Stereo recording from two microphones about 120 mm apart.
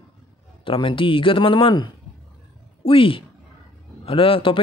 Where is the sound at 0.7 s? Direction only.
45° left (ahead or behind).